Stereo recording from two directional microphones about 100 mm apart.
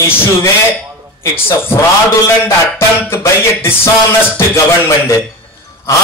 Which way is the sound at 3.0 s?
25° left (ahead or behind).